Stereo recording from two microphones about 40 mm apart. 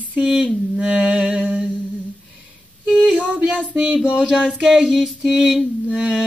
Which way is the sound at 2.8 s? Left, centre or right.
Right.